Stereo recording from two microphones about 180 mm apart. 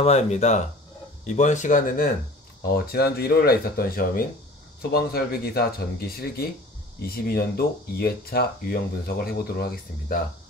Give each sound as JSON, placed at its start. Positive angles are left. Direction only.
{"t": 0.0, "sound": "speech", "side_deg": 40}
{"t": 2.7, "sound": "speech", "side_deg": 60}